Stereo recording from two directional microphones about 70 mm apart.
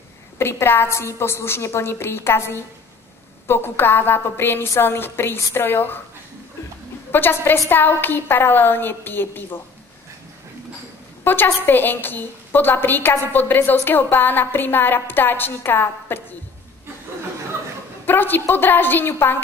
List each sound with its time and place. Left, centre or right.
0.4 s a woman's voice: left
7.1 s a woman's voice: left
11.2 s a woman's voice: left
18.0 s a woman's voice: left